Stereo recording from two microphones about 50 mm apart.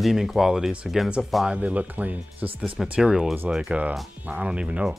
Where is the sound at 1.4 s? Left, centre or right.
Right.